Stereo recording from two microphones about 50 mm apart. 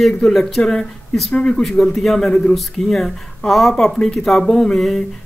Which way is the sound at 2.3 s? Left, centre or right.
Left.